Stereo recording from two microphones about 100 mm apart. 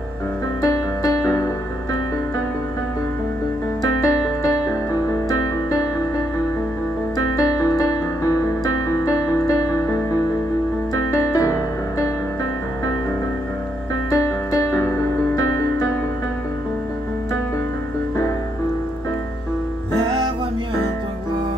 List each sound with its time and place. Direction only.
0.6 s music: 35° left (ahead or behind)
3.8 s piano: 35° left (ahead or behind)
7.3 s music: 35° left (ahead or behind)
11.1 s piano: 30° left (ahead or behind)
14.1 s music: 30° left (ahead or behind)